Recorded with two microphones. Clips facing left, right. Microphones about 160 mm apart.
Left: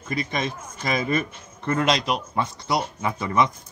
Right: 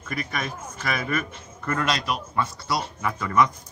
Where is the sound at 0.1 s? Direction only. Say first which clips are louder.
Left 3 dB; 20° left (ahead or behind).